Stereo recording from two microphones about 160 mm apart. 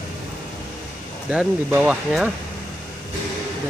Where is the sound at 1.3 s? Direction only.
5° right (ahead or behind).